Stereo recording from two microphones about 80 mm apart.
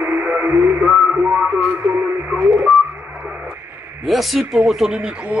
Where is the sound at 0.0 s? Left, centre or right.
Right.